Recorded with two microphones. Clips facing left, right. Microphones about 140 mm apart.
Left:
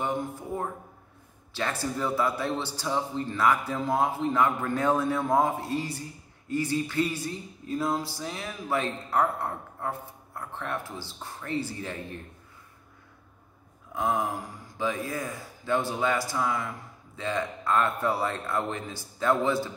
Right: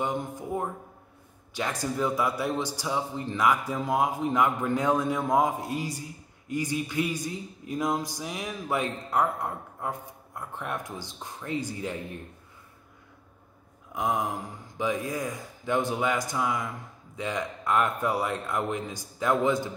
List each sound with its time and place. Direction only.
0.0 s a man's voice: 15° right (ahead or behind)
13.9 s a man's voice: 15° right (ahead or behind)